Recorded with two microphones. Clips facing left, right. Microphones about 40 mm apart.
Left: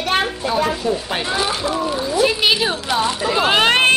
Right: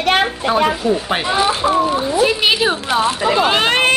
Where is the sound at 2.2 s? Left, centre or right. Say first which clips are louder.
Even; centre.